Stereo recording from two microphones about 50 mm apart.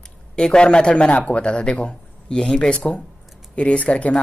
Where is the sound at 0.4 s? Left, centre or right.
Centre.